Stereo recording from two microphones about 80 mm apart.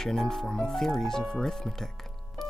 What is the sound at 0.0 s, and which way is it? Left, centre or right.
Speech, centre.